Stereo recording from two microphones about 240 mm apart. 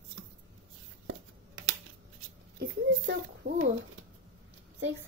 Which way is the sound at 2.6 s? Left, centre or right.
Right.